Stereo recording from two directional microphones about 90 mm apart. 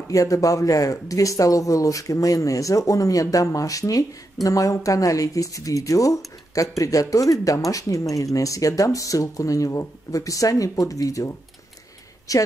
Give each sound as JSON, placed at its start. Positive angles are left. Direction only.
{"t": 0.1, "sound": "speech", "side_deg": 40}